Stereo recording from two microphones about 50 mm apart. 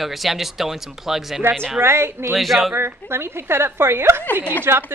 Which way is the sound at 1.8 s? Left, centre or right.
Right.